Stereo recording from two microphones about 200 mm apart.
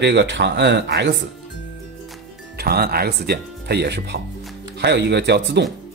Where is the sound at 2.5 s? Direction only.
50° right (ahead or behind).